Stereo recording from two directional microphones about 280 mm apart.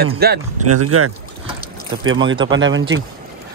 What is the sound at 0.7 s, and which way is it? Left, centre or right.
Speech, right.